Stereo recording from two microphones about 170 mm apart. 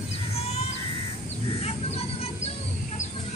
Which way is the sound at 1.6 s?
35° left (ahead or behind).